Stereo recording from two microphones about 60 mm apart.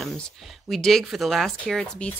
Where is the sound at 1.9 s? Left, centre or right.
Centre.